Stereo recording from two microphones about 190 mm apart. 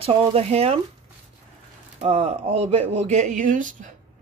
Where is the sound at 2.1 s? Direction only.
35° right (ahead or behind).